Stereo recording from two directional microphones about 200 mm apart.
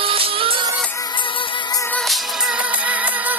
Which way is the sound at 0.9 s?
20° left (ahead or behind).